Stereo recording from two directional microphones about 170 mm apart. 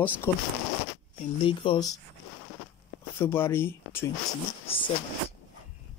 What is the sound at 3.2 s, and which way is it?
Speech, 15° left (ahead or behind).